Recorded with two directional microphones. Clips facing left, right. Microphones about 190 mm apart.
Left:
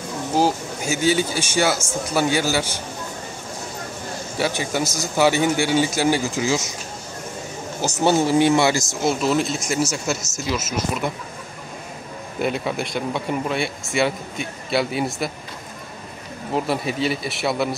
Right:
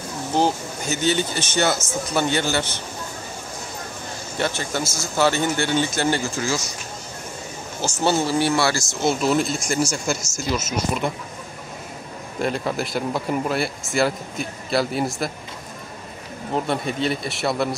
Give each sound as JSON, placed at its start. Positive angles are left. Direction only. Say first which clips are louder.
{"t": 0.4, "sound": "speech", "louder": "left 1 dB", "side_deg": 10}
{"t": 4.4, "sound": "speech", "louder": "left 2 dB", "side_deg": 15}
{"t": 7.8, "sound": "speech", "louder": "left 3 dB", "side_deg": 15}
{"t": 9.0, "sound": "speech", "louder": "right 1 dB", "side_deg": 0}
{"t": 12.4, "sound": "speech", "louder": "even", "side_deg": 5}
{"t": 16.5, "sound": "speech", "louder": "left 1 dB", "side_deg": 5}